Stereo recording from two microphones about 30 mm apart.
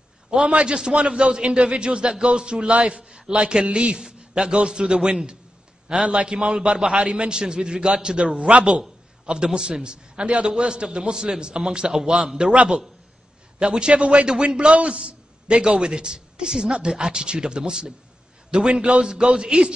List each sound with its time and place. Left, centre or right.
0.3 s a man's voice: right
13.6 s a man's voice: right
15.0 s a sound: right
15.5 s speech: right